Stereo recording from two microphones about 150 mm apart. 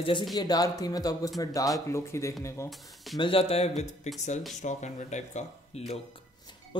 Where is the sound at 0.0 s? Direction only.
35° left (ahead or behind).